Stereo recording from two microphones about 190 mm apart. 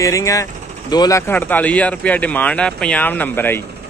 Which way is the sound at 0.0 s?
15° left (ahead or behind).